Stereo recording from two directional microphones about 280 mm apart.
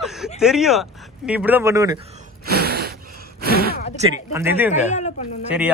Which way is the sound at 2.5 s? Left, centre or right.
Right.